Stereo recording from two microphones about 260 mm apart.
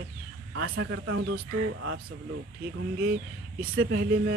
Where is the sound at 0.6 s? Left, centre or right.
Right.